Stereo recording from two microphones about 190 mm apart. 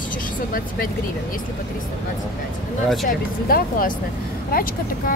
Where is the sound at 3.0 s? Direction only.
50° left (ahead or behind).